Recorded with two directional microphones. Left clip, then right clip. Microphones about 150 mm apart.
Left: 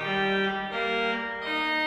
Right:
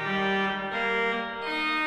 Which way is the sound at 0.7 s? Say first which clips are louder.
Right 2 dB; 25° left (ahead or behind).